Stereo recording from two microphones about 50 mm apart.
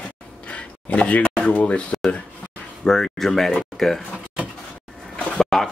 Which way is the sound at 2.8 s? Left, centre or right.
Centre.